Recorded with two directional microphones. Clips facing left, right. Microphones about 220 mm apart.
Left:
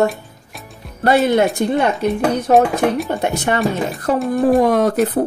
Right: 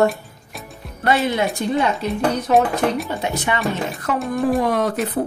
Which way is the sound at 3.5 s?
45° left (ahead or behind).